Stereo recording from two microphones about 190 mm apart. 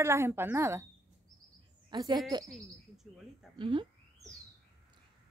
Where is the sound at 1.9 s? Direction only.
20° right (ahead or behind).